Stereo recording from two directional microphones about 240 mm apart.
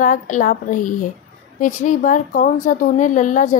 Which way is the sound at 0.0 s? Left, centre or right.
Left.